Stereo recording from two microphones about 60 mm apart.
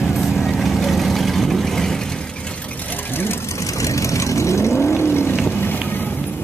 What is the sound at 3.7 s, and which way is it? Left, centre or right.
Vehicle, left.